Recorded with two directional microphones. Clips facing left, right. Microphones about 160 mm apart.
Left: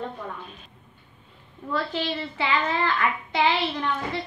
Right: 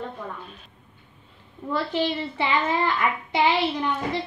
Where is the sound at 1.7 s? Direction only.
20° right (ahead or behind).